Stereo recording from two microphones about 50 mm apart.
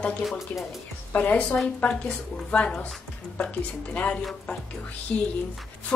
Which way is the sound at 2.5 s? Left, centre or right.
Centre.